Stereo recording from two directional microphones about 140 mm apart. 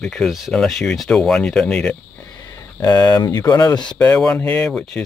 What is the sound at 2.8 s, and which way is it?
Speech, 30° left (ahead or behind).